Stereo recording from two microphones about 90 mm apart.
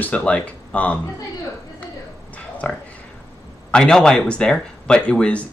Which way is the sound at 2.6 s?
10° left (ahead or behind).